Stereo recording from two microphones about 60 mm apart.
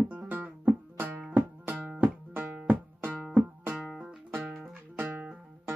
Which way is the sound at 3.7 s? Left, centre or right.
Centre.